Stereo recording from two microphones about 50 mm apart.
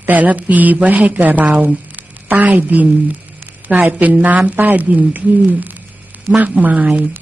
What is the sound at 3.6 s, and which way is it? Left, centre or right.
A woman's voice, right.